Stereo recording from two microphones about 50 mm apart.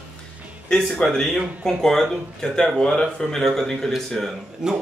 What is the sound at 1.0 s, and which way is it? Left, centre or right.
Speech, left.